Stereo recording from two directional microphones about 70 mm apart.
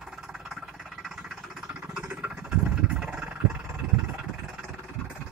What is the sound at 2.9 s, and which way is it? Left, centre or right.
Vehicle, centre.